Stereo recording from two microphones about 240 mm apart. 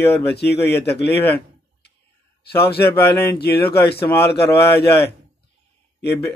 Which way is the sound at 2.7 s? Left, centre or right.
Left.